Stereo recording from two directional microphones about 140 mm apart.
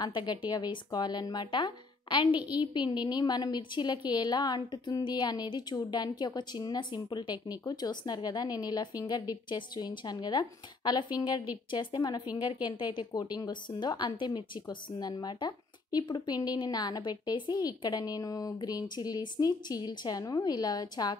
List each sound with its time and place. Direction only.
0.0 s a woman's voice: 30° left (ahead or behind)